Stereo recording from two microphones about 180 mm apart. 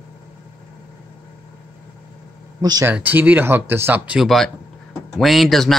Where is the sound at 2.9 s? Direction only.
10° right (ahead or behind).